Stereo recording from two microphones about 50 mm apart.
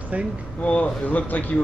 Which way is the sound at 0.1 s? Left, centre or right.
Right.